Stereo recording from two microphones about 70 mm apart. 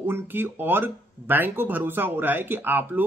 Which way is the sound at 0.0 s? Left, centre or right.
Right.